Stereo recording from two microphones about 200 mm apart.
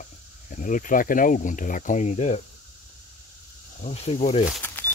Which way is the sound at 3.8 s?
35° left (ahead or behind).